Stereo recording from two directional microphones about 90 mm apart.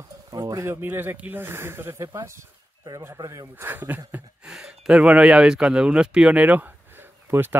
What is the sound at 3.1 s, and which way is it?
Speech, 45° right (ahead or behind).